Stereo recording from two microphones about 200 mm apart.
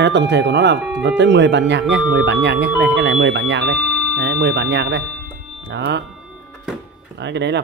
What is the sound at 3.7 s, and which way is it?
Doorbell, centre (ahead or behind).